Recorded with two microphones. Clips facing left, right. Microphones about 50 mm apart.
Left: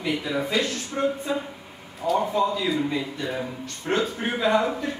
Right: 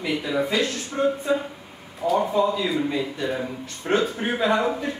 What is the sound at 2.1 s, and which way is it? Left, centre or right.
A man's voice, centre.